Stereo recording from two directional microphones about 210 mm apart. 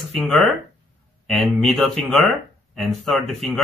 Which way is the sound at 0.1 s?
5° left (ahead or behind).